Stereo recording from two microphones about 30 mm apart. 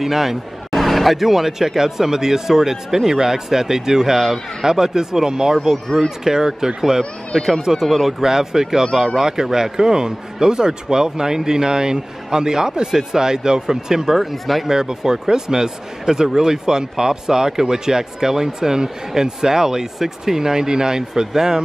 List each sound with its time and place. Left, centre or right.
0.0 s speech: centre
4.2 s speech: centre
4.6 s speech: centre
7.0 s speech: centre
7.8 s speech: centre
8.2 s speech: centre
14.1 s speech: centre
14.7 s speech: centre